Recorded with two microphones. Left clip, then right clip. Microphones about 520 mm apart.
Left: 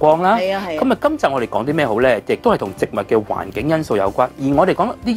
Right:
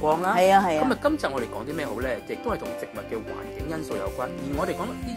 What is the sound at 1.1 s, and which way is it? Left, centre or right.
Speech, left.